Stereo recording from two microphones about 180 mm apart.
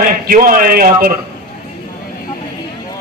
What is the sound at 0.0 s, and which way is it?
A man's voice, 50° right (ahead or behind).